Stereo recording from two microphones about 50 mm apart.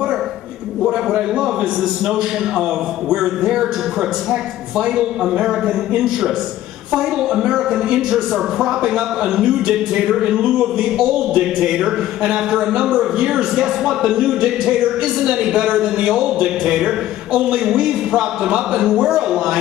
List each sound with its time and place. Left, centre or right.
1.3 s speech: centre